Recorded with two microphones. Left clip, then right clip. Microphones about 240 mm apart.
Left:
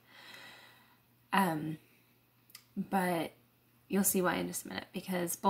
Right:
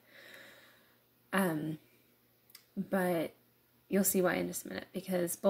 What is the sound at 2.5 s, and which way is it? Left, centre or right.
A woman's voice, centre.